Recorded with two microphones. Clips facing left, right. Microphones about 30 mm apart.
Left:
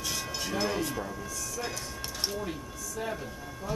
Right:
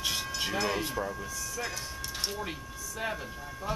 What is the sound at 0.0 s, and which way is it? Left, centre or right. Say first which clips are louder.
Train: right 2 dB; right.